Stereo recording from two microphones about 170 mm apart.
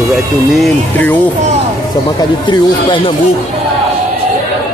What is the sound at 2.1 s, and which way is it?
Speech, 25° left (ahead or behind).